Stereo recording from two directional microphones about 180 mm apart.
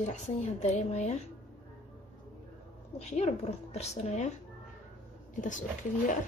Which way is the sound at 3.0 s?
35° left (ahead or behind).